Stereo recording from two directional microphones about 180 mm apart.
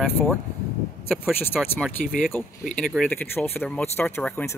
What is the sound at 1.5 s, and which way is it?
Speech, 5° right (ahead or behind).